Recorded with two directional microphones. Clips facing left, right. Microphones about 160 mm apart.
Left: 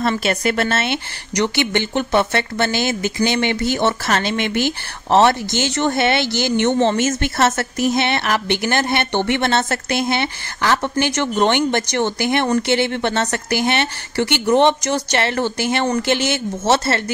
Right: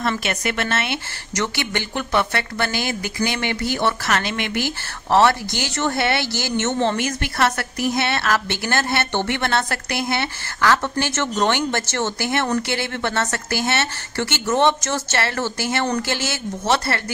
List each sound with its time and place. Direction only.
0.0 s speech: 30° left (ahead or behind)
1.3 s speech: 20° left (ahead or behind)